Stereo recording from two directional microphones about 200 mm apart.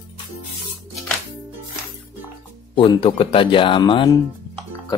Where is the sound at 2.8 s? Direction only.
25° left (ahead or behind).